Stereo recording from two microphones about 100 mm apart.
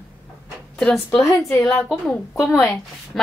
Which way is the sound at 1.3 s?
30° left (ahead or behind).